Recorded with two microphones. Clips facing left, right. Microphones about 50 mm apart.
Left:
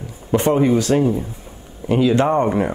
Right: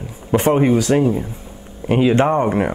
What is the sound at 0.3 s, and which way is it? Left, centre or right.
Speech, right.